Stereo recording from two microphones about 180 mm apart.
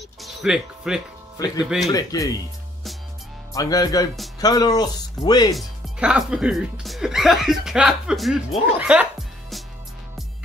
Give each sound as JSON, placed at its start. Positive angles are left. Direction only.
{"t": 0.2, "sound": "music", "side_deg": 0}
{"t": 1.6, "sound": "speech", "side_deg": -5}
{"t": 1.9, "sound": "speech", "side_deg": 20}
{"t": 3.5, "sound": "speech", "side_deg": 20}
{"t": 5.5, "sound": "speech", "side_deg": -5}
{"t": 8.7, "sound": "music", "side_deg": -10}